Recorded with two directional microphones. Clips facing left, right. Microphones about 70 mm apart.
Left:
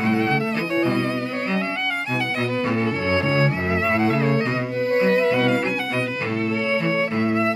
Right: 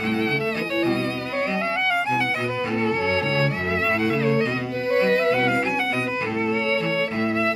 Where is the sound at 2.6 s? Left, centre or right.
Left.